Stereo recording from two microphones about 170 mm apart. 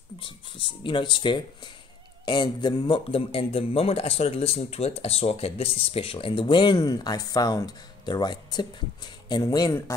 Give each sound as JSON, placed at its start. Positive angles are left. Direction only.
{"t": 0.2, "sound": "speech", "side_deg": 30}